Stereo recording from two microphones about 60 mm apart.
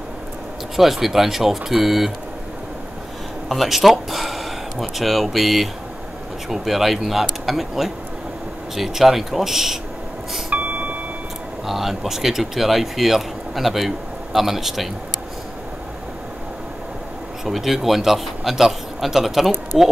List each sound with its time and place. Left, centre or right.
0.7 s speech: centre
3.4 s speech: centre
10.5 s a sound: right
11.6 s speech: centre
17.5 s speech: centre